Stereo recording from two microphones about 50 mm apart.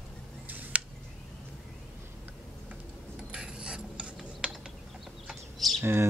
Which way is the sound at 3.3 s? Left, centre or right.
Centre.